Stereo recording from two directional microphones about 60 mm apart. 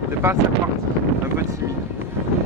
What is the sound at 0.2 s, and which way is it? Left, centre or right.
Speech, right.